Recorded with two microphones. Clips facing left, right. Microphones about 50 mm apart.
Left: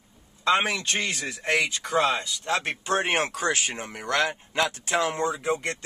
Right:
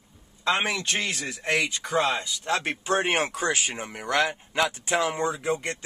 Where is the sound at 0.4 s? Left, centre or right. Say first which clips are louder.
Left 2 dB; centre.